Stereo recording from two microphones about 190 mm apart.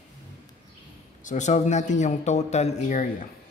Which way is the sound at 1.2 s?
40° left (ahead or behind).